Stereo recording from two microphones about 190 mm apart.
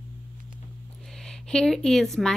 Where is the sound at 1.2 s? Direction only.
Centre (ahead or behind).